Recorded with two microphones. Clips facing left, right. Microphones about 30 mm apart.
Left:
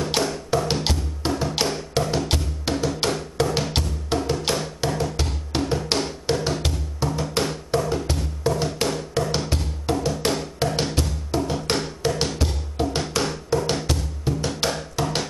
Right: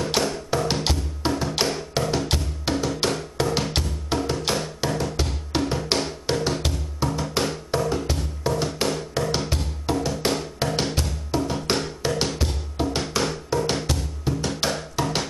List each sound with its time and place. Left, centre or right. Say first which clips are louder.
0.2 s music: left 1 dB; centre